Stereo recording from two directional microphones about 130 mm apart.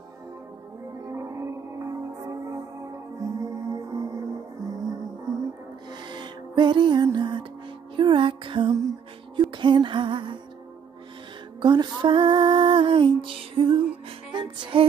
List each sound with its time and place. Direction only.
1.0 s music: 25° right (ahead or behind); by 10.4 s 40° right (ahead or behind)
11.6 s music: 35° right (ahead or behind)